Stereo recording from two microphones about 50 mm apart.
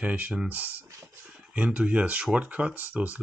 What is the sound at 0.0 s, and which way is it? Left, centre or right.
Speech, right.